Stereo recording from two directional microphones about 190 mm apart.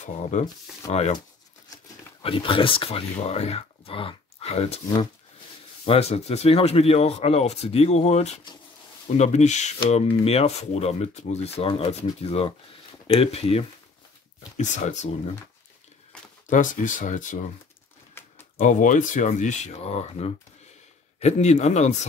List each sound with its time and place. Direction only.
0.0 s speech: 40° left (ahead or behind)
2.2 s speech: 25° left (ahead or behind)
5.9 s speech: 35° left (ahead or behind)
16.4 s speech: 40° left (ahead or behind)
18.2 s a sound: 10° left (ahead or behind)
18.6 s speech: 40° left (ahead or behind)